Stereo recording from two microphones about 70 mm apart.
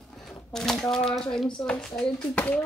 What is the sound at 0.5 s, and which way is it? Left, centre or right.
Speech, centre.